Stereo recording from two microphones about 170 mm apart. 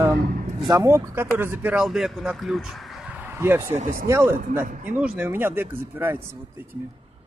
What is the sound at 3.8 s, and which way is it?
Speech, 45° right (ahead or behind).